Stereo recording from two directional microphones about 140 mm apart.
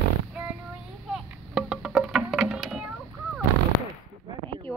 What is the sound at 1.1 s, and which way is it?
Music, 5° right (ahead or behind).